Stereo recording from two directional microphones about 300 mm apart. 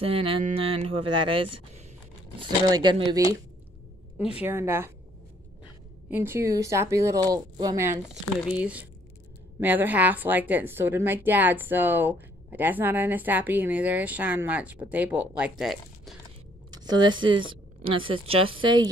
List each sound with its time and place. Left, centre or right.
0.0 s speech: centre
4.4 s speech: centre
6.0 s a woman's voice: centre
16.7 s a sound: centre
17.2 s speech: centre